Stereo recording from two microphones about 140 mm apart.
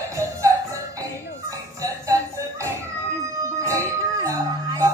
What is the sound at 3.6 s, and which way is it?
Music, 20° right (ahead or behind).